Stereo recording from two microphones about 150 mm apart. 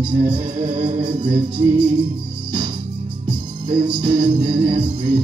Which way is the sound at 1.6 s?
35° right (ahead or behind).